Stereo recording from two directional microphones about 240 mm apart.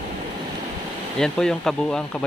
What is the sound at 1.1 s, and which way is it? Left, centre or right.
Speech, centre.